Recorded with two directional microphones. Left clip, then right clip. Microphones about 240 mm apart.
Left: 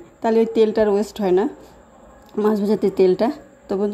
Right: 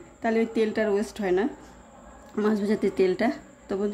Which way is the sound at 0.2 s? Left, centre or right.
Centre.